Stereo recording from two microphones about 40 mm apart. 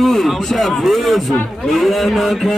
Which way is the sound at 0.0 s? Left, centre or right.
Centre.